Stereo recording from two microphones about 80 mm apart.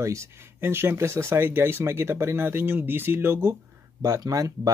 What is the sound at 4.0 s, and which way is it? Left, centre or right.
Speech, right.